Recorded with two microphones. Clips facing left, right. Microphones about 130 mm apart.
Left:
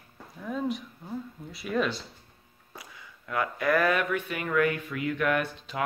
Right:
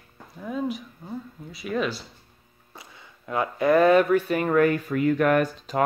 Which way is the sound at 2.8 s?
25° right (ahead or behind).